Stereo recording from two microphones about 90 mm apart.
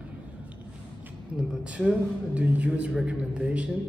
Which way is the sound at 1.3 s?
10° right (ahead or behind).